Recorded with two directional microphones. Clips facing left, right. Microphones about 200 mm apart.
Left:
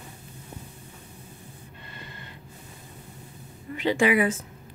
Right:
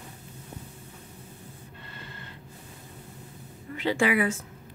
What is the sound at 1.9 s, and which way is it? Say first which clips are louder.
Snort: left 1 dB; 15° left (ahead or behind).